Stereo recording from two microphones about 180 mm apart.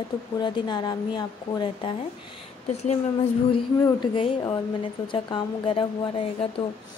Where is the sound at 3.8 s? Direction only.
25° left (ahead or behind).